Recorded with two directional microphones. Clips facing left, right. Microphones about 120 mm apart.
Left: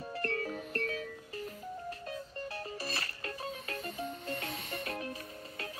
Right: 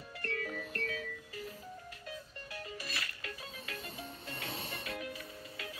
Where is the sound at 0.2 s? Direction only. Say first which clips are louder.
Left 3 dB; 35° left (ahead or behind).